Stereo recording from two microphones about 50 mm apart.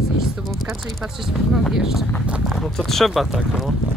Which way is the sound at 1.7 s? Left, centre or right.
Centre.